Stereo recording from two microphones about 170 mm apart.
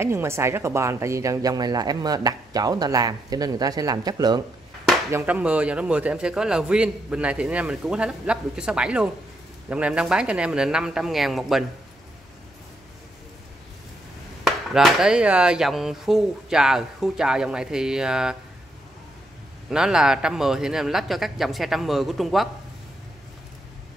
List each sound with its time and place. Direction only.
0.0 s speech: 15° right (ahead or behind)
5.1 s a man's voice: 10° right (ahead or behind)
14.4 s speech: centre (ahead or behind)
19.7 s speech: 5° right (ahead or behind)